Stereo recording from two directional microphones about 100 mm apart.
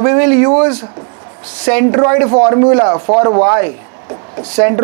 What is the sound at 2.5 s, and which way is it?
Speech, 40° right (ahead or behind).